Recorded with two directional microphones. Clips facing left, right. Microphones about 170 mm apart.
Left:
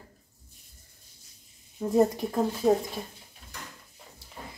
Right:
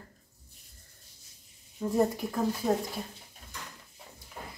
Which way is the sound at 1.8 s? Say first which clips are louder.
Left 4 dB; 20° left (ahead or behind).